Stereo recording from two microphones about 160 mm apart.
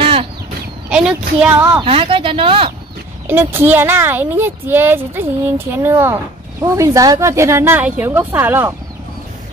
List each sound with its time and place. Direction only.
0.0 s chicken: 35° right (ahead or behind)
0.9 s speech: 5° right (ahead or behind)
1.8 s speech: 35° right (ahead or behind)
3.3 s speech: 15° right (ahead or behind)